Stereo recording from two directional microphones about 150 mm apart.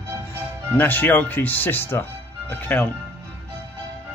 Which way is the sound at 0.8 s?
15° left (ahead or behind).